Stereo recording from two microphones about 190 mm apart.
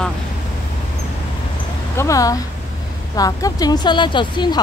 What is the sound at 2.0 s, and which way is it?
Speech, 15° left (ahead or behind).